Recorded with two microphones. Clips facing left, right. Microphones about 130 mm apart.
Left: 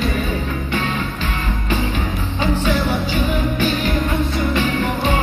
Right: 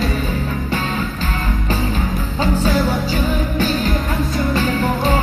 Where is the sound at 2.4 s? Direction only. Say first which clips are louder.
Right 2 dB; 40° right (ahead or behind).